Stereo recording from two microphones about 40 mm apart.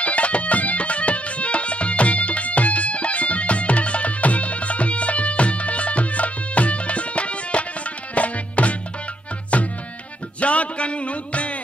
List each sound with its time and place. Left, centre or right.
0.0 s music: left
9.5 s tabla: left
10.4 s a sound: left